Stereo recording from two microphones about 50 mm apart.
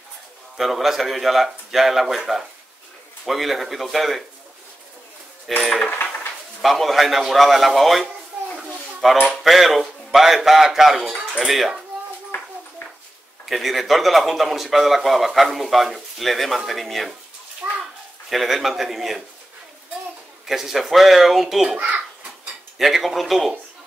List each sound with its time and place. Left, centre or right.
0.6 s a man's voice: centre
5.5 s a man's voice: centre
11.1 s a sound: centre
13.5 s a man's voice: centre
17.6 s children playing: right
18.3 s a man's voice: centre
20.4 s a man's voice: centre
21.7 s a child's voice: right
22.8 s a man's voice: centre